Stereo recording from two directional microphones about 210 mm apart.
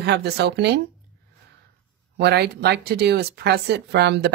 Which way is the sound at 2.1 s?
50° right (ahead or behind).